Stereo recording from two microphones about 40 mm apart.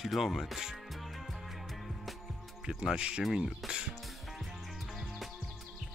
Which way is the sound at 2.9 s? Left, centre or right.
Right.